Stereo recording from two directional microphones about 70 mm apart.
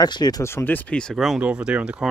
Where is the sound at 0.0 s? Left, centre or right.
Left.